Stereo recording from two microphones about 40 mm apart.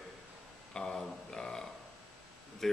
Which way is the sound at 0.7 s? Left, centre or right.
Centre.